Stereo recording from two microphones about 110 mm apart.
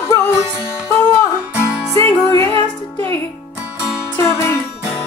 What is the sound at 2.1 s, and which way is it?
Music, 30° left (ahead or behind).